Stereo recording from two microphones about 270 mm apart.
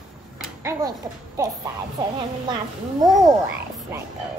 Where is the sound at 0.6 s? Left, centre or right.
Centre.